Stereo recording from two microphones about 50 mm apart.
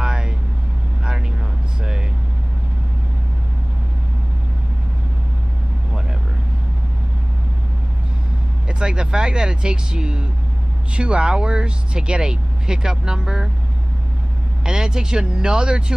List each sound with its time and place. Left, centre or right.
0.0 s vehicle: centre
8.6 s speech: centre
14.6 s speech: centre